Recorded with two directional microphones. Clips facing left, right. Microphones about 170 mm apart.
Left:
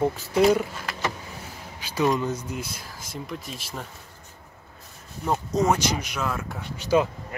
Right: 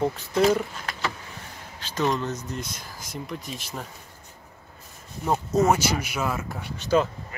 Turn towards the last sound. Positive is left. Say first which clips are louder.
# left 1 dB
turn(degrees=10)  # may be behind; listen again after turning